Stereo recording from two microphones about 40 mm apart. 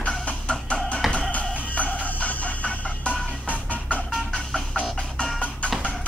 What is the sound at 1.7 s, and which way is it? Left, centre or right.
Music, left.